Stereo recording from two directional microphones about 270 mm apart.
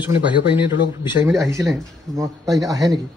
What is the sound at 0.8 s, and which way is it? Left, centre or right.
Speech, centre.